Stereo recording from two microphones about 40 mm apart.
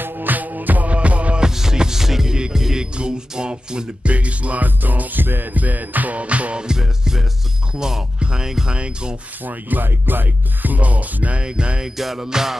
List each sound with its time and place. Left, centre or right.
0.0 s music: right
1.4 s music: centre; by 4.6 s right
4.6 s music: right
5.2 s music: right
5.5 s music: right
6.6 s music: centre
7.7 s speech: centre
8.7 s rub: right
9.4 s music: right
11.4 s rub: right
11.8 s speech: centre